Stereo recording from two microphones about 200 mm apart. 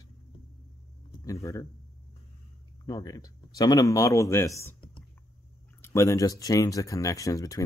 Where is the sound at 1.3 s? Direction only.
15° left (ahead or behind).